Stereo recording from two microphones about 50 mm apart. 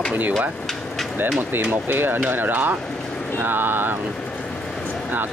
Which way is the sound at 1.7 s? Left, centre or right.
Right.